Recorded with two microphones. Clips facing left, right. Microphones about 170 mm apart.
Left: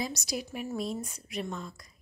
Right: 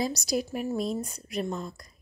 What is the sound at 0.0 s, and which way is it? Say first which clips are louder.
A woman's voice: right 6 dB; 35° right (ahead or behind).